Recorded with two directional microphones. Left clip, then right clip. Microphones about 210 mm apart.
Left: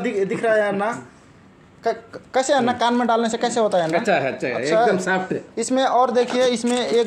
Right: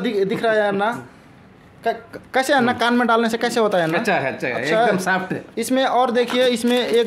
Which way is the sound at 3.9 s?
35° right (ahead or behind).